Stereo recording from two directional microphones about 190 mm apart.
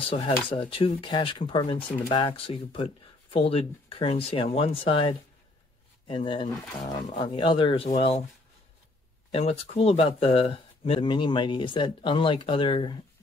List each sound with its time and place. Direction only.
0.0 s speech: 30° left (ahead or behind)
9.3 s speech: 30° left (ahead or behind)